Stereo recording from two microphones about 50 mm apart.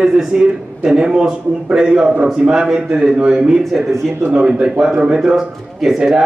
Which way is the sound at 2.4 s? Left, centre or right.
Right.